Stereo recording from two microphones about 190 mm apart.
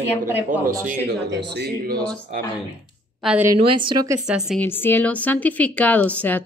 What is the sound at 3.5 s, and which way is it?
Speech, 25° right (ahead or behind).